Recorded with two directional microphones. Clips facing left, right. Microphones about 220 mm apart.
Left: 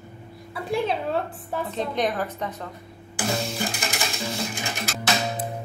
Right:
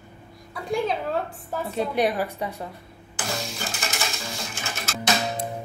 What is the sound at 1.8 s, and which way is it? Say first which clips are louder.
Speech: right 3 dB; 10° right (ahead or behind).